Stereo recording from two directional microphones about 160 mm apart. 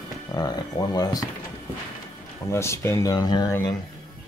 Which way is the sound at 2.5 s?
15° left (ahead or behind).